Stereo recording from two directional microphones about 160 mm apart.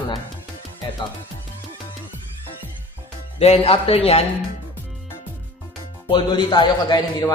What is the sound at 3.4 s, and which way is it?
Speech, 40° left (ahead or behind).